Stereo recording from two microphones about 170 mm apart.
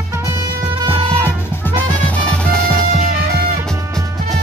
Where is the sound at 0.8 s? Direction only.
30° right (ahead or behind).